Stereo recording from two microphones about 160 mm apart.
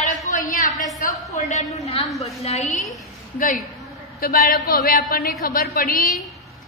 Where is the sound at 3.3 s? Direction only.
60° left (ahead or behind).